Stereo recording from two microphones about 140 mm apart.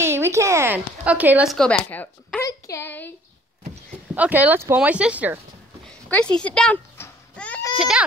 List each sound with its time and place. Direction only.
0.0 s a woman's voice: 20° right (ahead or behind)
1.5 s speech: 5° left (ahead or behind)
2.4 s a woman's voice: 25° left (ahead or behind)
4.1 s speech: 10° right (ahead or behind)
5.9 s speech: 10° left (ahead or behind)
7.0 s babbling: 10° left (ahead or behind)